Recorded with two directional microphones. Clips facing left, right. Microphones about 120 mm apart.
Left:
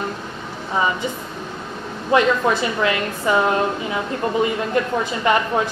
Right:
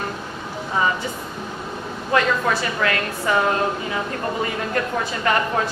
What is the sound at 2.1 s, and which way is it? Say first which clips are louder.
A woman's voice: left 3 dB; 20° left (ahead or behind).